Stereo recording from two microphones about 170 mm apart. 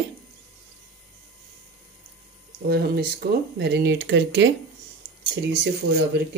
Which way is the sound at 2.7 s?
65° right (ahead or behind).